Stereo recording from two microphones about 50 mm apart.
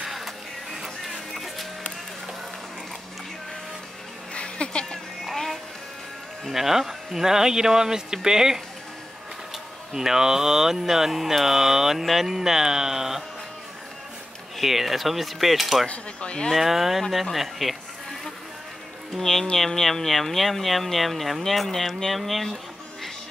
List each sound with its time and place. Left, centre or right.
0.0 s printer: centre
0.7 s music: centre
4.3 s a sound: left
5.2 s music: centre
6.5 s speech: centre
9.9 s speech: centre
14.6 s speech: centre
15.9 s speech: left
16.5 s speech: centre
19.1 s speech: centre